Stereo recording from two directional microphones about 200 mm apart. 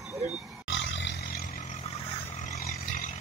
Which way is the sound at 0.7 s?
70° left (ahead or behind).